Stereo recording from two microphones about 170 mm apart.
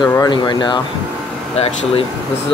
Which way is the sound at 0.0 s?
25° left (ahead or behind).